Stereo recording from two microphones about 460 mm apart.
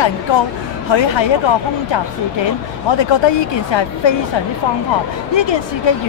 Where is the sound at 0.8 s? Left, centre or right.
Left.